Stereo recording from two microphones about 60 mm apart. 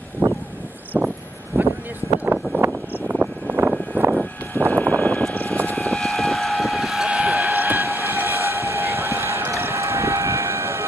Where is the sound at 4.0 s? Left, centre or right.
Right.